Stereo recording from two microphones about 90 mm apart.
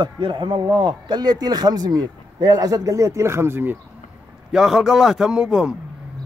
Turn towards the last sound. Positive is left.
turn(degrees=-5)  # may be behind; listen again after turning